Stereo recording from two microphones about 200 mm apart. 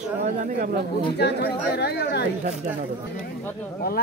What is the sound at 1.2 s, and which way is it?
Speech, 55° left (ahead or behind).